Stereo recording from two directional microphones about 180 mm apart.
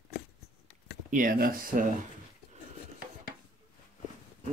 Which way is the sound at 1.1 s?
50° right (ahead or behind).